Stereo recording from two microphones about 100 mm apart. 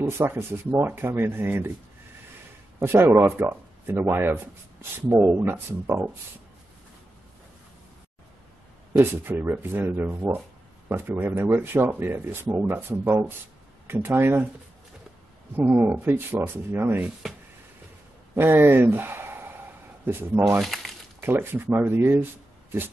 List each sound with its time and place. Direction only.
0.0 s speech: 25° right (ahead or behind)
2.8 s speech: 25° right (ahead or behind)
8.9 s speech: 20° right (ahead or behind)
15.5 s speech: 20° right (ahead or behind)
18.3 s speech: 20° right (ahead or behind)
20.6 s crumpling: centre (ahead or behind)
21.2 s speech: 25° right (ahead or behind)